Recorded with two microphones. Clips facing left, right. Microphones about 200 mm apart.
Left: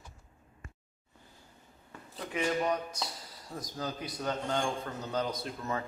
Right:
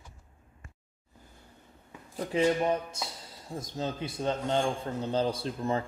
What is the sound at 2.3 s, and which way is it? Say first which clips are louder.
A man's voice: right 5 dB; 25° right (ahead or behind).